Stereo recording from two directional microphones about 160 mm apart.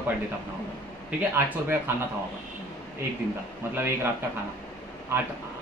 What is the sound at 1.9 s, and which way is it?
Speech, 15° right (ahead or behind).